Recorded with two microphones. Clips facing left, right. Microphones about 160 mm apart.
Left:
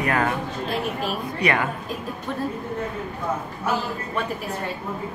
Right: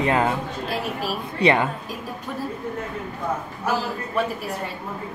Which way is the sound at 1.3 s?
25° right (ahead or behind).